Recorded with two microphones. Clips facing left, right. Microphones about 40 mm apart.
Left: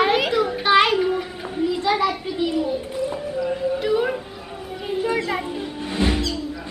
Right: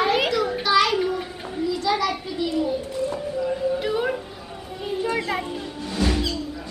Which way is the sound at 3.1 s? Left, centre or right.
Centre.